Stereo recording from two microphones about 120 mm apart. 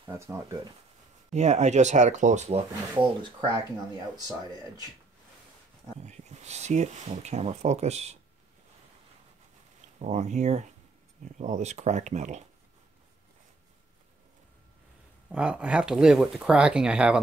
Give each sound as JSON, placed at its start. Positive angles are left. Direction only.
{"t": 0.1, "sound": "speech", "side_deg": -20}
{"t": 1.3, "sound": "speech", "side_deg": -70}
{"t": 3.0, "sound": "speech", "side_deg": -40}
{"t": 5.9, "sound": "speech", "side_deg": -70}
{"t": 9.9, "sound": "speech", "side_deg": -70}
{"t": 11.2, "sound": "speech", "side_deg": -85}
{"t": 15.2, "sound": "speech", "side_deg": -10}